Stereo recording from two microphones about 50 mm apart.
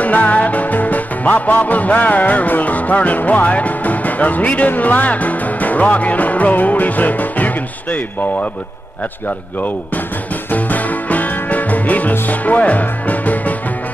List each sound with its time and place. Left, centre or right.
0.0 s music: left
10.5 s music: left